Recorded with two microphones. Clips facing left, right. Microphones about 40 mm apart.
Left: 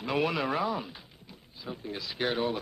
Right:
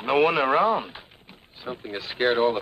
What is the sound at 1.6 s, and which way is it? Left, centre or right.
Speech, right.